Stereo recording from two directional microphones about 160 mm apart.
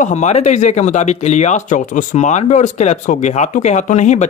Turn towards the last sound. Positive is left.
turn(degrees=45)  # may be behind; listen again after turning